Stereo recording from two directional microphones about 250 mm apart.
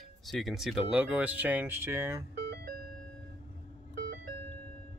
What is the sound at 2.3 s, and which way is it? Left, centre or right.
Music, right.